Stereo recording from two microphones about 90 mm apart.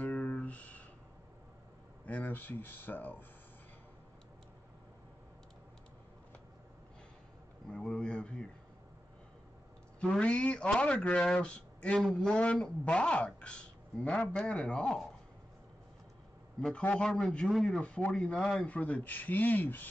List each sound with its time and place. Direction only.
0.0 s a sound: 15° left (ahead or behind)
2.0 s speech: 20° left (ahead or behind)
7.7 s speech: 10° left (ahead or behind)
9.9 s speech: 10° left (ahead or behind)
17.0 s speech: 10° left (ahead or behind)
17.8 s speech: 10° left (ahead or behind)